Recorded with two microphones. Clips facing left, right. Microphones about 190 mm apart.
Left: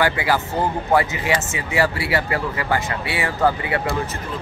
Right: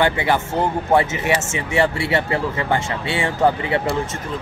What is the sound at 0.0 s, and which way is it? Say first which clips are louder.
Speech: right 1 dB; 25° right (ahead or behind).